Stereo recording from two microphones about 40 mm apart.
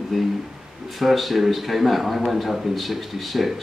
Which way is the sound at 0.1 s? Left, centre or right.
Centre.